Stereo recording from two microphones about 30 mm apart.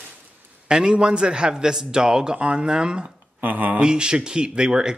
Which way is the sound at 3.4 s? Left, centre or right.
Right.